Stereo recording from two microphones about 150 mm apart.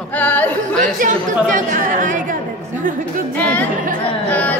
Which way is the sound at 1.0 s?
60° right (ahead or behind).